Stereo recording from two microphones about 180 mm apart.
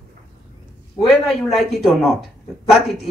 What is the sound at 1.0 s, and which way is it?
A woman's voice, centre (ahead or behind).